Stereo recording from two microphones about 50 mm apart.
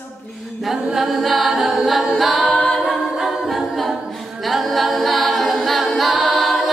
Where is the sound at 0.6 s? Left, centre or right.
Centre.